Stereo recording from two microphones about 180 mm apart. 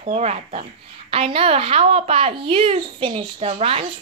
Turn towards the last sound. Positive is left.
turn(degrees=-30)  # may be behind; listen again after turning